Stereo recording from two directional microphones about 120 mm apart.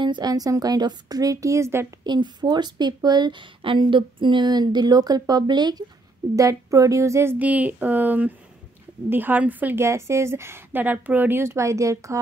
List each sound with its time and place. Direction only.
0.0 s a woman's voice: 35° right (ahead or behind)
2.0 s a woman's voice: 40° right (ahead or behind)